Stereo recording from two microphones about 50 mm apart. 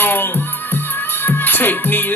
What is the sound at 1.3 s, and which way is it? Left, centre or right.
Music, left.